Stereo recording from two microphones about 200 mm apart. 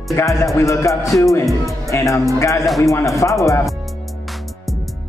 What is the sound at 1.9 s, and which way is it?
Speech, 15° left (ahead or behind).